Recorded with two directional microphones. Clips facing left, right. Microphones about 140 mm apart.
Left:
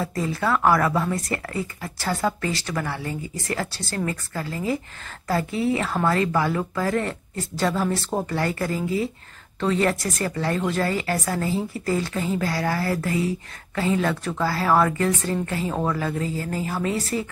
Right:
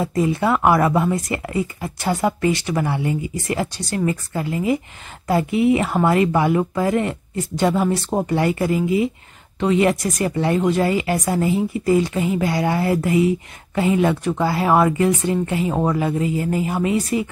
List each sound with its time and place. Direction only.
0.0 s speech: 20° right (ahead or behind)